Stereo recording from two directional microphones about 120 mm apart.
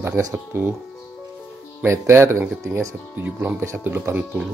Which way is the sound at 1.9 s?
20° right (ahead or behind).